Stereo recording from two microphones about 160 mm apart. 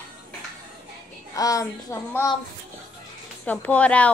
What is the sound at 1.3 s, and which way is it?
A woman's voice, 20° left (ahead or behind).